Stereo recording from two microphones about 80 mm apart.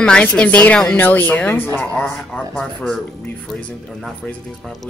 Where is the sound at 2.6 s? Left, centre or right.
Centre.